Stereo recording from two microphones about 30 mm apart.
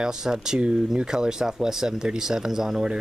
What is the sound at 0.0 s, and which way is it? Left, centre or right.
Speech, centre.